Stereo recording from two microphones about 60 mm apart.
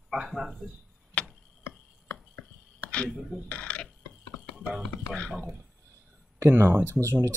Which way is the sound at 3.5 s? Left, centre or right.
Left.